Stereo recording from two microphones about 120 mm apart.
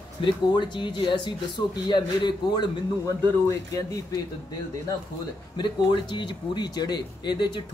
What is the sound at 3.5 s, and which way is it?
Speech, 30° left (ahead or behind).